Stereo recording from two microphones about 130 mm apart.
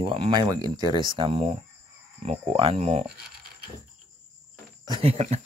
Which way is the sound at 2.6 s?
45° right (ahead or behind).